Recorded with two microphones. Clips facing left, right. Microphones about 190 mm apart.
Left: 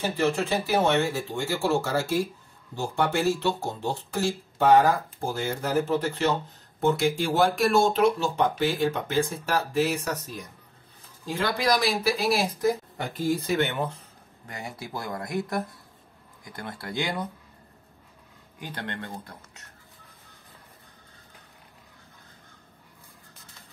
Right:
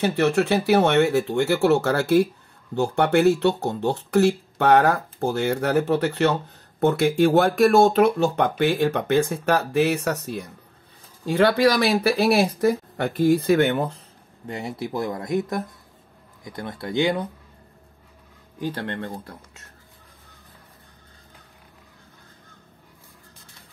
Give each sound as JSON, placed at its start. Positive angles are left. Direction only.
{"t": 0.0, "sound": "speech", "side_deg": -70}
{"t": 14.5, "sound": "speech", "side_deg": -25}
{"t": 18.9, "sound": "speech", "side_deg": -35}